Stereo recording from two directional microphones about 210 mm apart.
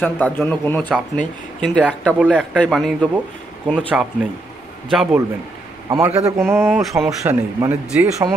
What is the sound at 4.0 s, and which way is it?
A man's voice, 5° right (ahead or behind).